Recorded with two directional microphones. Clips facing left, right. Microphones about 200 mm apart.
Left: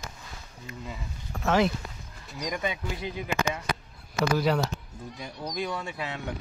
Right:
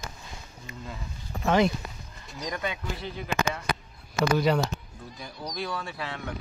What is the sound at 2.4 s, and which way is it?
Speech, 15° left (ahead or behind).